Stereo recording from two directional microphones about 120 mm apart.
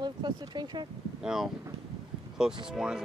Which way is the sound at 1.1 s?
5° right (ahead or behind).